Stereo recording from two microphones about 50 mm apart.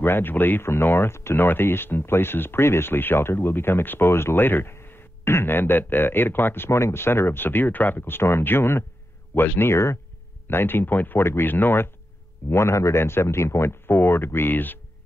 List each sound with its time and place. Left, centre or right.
0.0 s speech: left
10.5 s speech: left
11.2 s speech: left
12.4 s speech: left